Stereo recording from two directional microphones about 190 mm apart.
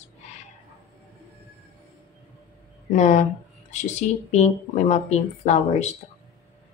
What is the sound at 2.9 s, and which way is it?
Speech, 40° left (ahead or behind).